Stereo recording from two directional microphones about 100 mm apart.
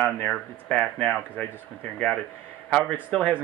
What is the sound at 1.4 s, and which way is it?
Speech, 10° left (ahead or behind).